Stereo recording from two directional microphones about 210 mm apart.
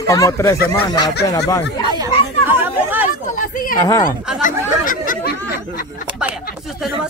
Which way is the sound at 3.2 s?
40° left (ahead or behind).